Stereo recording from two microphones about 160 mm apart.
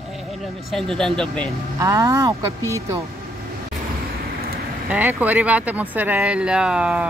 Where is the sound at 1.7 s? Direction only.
20° right (ahead or behind).